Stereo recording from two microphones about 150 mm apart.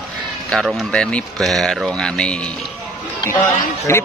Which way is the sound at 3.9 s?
15° left (ahead or behind).